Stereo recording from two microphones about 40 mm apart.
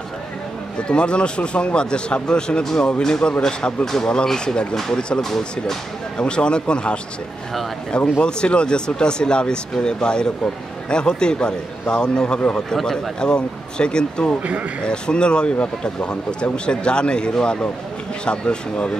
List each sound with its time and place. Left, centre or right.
0.7 s speech: left
6.1 s speech: left